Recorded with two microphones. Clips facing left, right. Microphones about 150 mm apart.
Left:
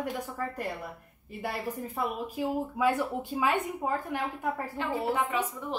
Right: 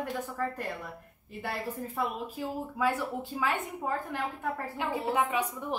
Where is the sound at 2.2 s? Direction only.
15° left (ahead or behind).